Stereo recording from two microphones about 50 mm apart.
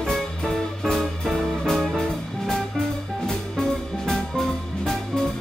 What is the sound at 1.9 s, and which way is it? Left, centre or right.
Music, centre.